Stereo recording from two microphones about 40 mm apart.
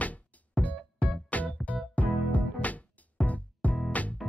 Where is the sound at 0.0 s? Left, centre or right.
Left.